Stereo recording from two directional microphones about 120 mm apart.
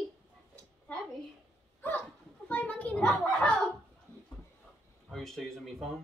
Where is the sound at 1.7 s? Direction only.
15° left (ahead or behind).